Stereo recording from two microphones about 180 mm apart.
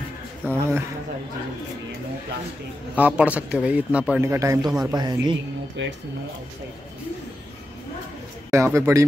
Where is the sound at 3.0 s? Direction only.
5° right (ahead or behind); by 5.3 s 25° right (ahead or behind).